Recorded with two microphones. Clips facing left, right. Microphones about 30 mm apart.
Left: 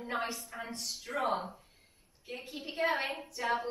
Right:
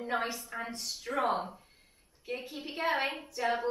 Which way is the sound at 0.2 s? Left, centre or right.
Centre.